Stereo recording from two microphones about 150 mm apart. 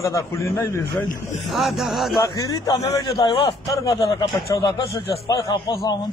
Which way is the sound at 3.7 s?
25° left (ahead or behind).